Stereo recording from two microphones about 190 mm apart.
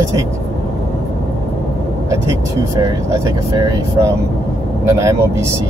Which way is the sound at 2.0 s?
15° right (ahead or behind).